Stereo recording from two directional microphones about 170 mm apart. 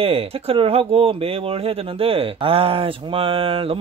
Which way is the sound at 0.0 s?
35° right (ahead or behind).